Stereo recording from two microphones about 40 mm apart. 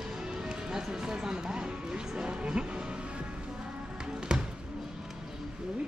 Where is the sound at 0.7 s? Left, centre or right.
Centre.